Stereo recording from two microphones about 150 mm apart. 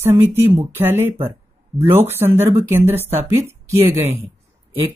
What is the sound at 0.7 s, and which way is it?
Speech, 15° right (ahead or behind).